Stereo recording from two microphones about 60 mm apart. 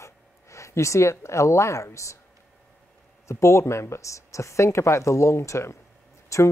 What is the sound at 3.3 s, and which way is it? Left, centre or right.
Speech, left.